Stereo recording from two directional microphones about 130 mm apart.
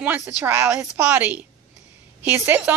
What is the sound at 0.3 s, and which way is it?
A woman's voice, 15° right (ahead or behind).